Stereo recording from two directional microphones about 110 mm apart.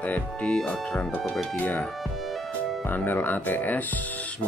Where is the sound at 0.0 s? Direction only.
10° left (ahead or behind).